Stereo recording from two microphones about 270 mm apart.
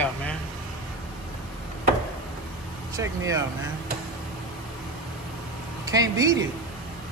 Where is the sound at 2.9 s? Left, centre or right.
Centre.